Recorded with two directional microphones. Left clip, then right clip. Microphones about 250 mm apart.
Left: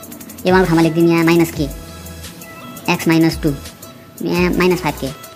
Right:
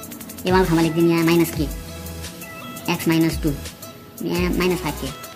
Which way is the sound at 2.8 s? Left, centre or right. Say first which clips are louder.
Left 6 dB; centre.